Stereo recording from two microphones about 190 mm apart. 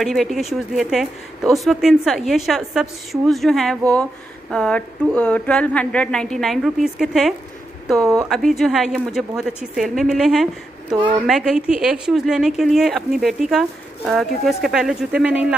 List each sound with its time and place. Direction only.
0.0 s speech: centre (ahead or behind)